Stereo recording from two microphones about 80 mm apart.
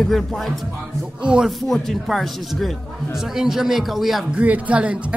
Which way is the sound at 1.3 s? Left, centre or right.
Centre.